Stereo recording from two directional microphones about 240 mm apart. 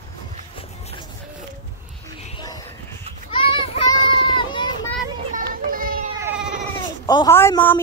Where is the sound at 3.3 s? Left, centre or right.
Left.